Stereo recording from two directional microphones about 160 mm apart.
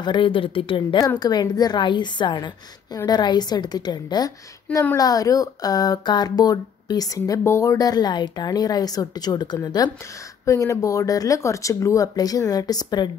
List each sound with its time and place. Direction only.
0.0 s a woman's voice: 30° left (ahead or behind)